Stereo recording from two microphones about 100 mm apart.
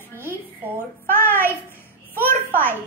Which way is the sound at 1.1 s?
20° left (ahead or behind).